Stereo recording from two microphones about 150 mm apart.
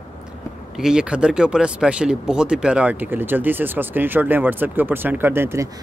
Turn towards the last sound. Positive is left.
turn(degrees=-15)  # may be behind; listen again after turning